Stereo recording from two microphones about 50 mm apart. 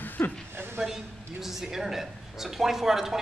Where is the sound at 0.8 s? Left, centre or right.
Centre.